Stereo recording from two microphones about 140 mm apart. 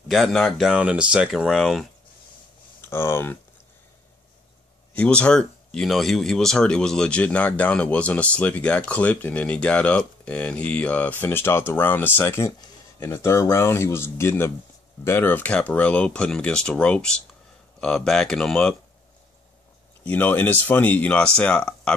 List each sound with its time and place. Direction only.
0.1 s speech: centre (ahead or behind)
2.8 s speech: 15° left (ahead or behind)
4.9 s speech: 10° left (ahead or behind)
20.1 s speech: 15° left (ahead or behind)